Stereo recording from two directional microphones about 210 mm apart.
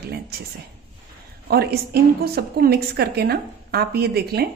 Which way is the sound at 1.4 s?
50° right (ahead or behind).